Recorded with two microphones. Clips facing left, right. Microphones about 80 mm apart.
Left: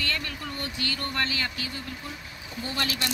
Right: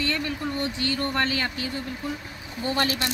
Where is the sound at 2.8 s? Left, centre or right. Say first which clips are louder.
Right 5 dB; right.